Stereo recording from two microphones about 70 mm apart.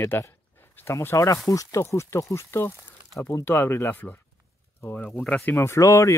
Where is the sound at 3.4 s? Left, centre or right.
Left.